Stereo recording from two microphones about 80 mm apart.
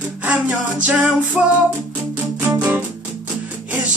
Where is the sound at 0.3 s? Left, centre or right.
Centre.